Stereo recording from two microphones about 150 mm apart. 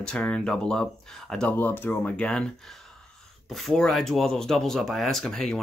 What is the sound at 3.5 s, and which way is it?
Speech, centre (ahead or behind).